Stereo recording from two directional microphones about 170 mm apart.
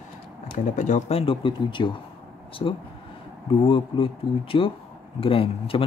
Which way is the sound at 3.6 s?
30° left (ahead or behind).